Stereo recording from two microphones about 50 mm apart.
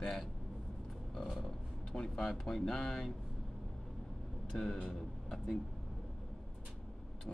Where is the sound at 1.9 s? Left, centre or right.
Centre.